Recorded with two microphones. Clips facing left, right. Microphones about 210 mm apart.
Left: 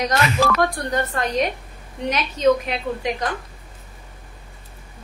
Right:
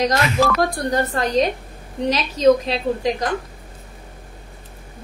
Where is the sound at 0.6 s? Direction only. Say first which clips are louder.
Right 2 dB; 35° right (ahead or behind).